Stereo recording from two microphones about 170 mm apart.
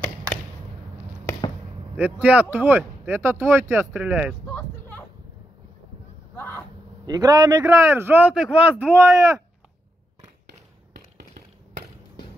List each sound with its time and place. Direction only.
2.0 s speech: 10° right (ahead or behind)
4.5 s a sound: 10° left (ahead or behind)
6.3 s vehicle: 15° left (ahead or behind)
7.1 s speech: 20° right (ahead or behind)
8.9 s speech: 20° right (ahead or behind)
11.1 s a sound: 60° right (ahead or behind)